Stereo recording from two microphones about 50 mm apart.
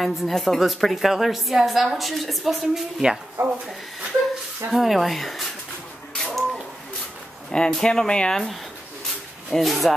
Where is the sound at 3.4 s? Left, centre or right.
Right.